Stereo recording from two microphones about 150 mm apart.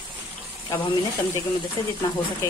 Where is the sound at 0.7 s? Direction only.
20° left (ahead or behind).